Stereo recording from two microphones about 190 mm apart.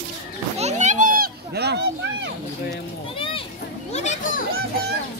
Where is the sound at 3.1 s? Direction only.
30° left (ahead or behind).